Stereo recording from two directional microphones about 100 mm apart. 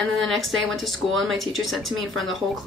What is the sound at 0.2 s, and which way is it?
Speech, centre (ahead or behind).